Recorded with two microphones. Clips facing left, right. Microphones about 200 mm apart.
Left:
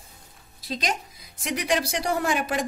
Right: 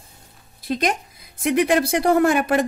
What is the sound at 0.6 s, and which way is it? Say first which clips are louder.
A woman's voice: right 7 dB; 55° right (ahead or behind).